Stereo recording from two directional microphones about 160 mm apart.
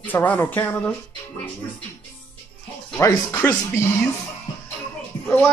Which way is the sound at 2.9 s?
15° left (ahead or behind).